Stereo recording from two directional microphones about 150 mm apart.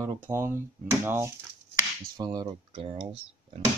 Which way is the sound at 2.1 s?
30° right (ahead or behind).